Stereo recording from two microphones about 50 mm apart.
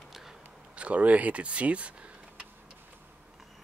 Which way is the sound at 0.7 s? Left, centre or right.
Right.